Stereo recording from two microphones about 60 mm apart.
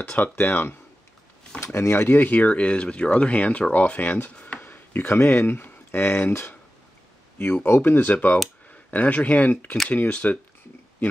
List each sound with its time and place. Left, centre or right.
0.1 s speech: left
7.6 s speech: left